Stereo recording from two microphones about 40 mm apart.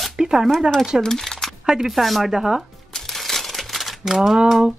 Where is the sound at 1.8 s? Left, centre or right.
Centre.